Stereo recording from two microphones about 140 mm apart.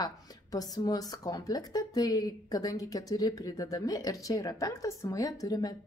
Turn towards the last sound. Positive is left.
turn(degrees=25)  # may be behind; listen again after turning